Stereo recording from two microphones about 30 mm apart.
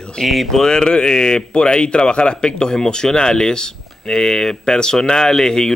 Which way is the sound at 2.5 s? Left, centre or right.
Left.